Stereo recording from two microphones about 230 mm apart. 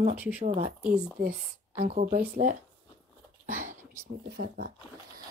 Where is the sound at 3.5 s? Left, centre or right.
Right.